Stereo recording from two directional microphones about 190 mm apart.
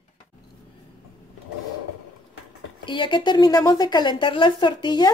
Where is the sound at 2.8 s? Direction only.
25° left (ahead or behind).